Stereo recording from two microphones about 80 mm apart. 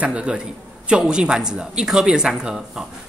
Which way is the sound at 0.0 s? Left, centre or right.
Centre.